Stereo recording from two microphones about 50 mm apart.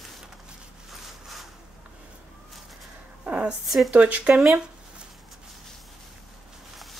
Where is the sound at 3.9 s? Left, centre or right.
Right.